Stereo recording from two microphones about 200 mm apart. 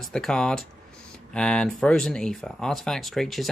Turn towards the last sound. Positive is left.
turn(degrees=0)  # may be behind; listen again after turning